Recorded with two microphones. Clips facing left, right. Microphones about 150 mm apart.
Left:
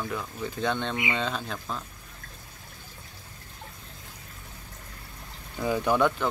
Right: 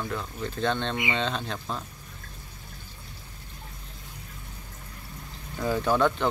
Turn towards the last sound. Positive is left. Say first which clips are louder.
# even
turn(degrees=10)  # may be behind; listen again after turning